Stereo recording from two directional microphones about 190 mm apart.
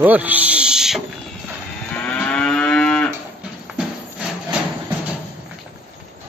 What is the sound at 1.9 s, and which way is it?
Moo, 5° left (ahead or behind).